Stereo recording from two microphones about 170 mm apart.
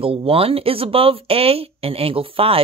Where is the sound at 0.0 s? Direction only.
35° right (ahead or behind).